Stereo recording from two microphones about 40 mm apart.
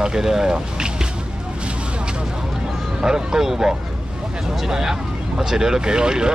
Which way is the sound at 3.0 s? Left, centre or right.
Centre.